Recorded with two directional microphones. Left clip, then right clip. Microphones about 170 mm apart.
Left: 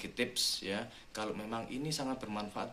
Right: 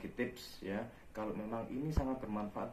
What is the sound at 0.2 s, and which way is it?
Speech, 20° left (ahead or behind).